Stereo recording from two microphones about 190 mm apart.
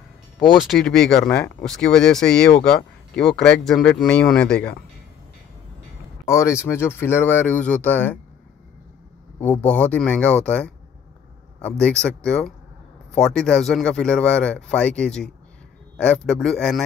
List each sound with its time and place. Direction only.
0.6 s speech: centre (ahead or behind)
6.2 s speech: 15° left (ahead or behind)
9.4 s speech: 10° left (ahead or behind)